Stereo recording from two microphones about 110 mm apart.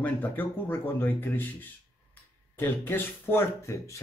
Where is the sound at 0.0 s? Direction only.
15° left (ahead or behind).